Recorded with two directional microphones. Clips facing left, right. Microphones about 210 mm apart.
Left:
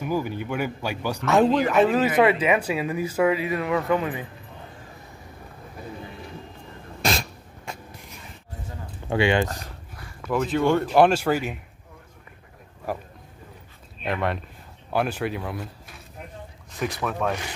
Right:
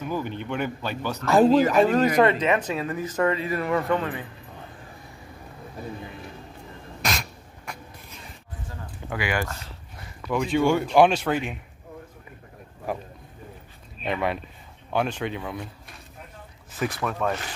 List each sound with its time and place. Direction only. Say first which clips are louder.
0.0 s speech: left 3 dB; 10° left (ahead or behind)
1.3 s speech: right 2 dB; 5° right (ahead or behind); by 4.3 s 15° left (ahead or behind)
7.0 s a sound: left 4 dB; 30° left (ahead or behind)
9.1 s speech: left 7 dB; 25° left (ahead or behind)
10.2 s speech: even; 5° left (ahead or behind)
14.0 s speech: even; centre (ahead or behind)